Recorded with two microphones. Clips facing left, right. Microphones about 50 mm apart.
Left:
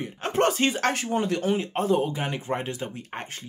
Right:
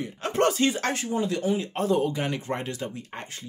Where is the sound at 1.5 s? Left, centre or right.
Left.